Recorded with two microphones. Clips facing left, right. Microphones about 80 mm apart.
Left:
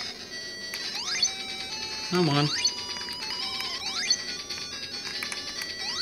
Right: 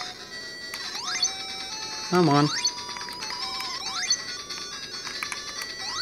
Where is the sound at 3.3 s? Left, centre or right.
Right.